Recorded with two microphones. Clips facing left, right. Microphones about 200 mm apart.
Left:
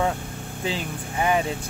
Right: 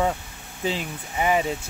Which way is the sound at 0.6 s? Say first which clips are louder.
Right 1 dB; centre (ahead or behind).